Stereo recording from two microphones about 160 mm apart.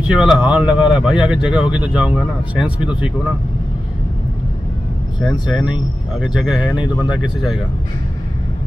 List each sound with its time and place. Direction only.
0.1 s speech: 5° right (ahead or behind)
5.2 s speech: 5° right (ahead or behind)